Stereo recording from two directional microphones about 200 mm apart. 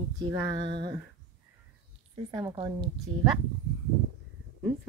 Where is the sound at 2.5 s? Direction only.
25° right (ahead or behind).